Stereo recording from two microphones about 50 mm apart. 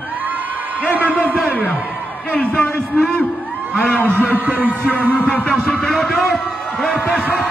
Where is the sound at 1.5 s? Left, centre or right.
Left.